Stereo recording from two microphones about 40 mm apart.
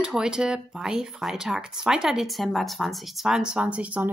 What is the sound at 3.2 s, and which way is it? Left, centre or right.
Speech, centre.